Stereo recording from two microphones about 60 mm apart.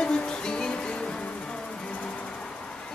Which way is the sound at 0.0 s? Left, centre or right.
Centre.